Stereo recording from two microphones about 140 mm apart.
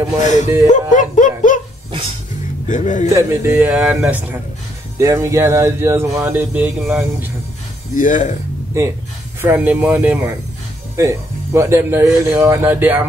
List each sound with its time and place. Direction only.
0.2 s a man's voice: 60° left (ahead or behind)
0.7 s a sound: 65° left (ahead or behind)
2.7 s a man's voice: 60° left (ahead or behind)
3.1 s speech: 25° right (ahead or behind)
4.9 s speech: 20° right (ahead or behind)
7.9 s speech: 70° left (ahead or behind)
9.4 s speech: 15° right (ahead or behind)